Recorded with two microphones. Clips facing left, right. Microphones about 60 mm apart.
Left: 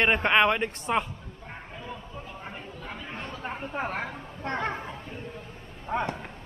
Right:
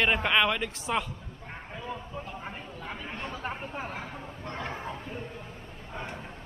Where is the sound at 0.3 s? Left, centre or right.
Left.